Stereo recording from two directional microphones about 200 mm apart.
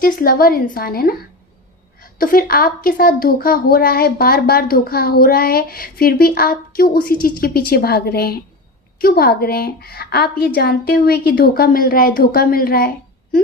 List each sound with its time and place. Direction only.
0.0 s a woman's voice: 45° left (ahead or behind)
2.1 s a woman's voice: 45° left (ahead or behind)